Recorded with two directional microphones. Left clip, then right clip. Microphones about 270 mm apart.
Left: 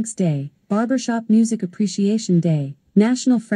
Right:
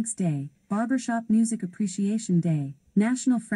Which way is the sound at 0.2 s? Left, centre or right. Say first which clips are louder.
Left 8 dB; left.